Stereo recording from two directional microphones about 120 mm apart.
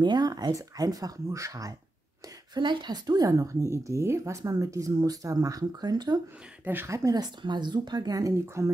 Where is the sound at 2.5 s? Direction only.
40° right (ahead or behind).